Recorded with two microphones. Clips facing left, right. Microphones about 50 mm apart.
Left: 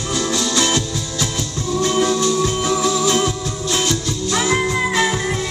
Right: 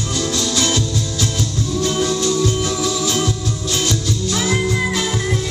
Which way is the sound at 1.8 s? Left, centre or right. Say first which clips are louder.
Left 2 dB; centre.